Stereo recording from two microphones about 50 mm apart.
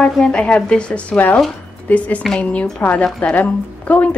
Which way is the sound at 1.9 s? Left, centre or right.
Left.